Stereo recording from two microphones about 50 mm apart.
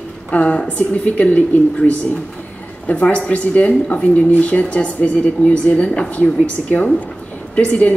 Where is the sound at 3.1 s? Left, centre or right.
Left.